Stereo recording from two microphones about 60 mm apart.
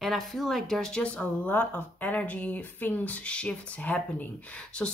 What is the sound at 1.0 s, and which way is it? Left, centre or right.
Speech, left.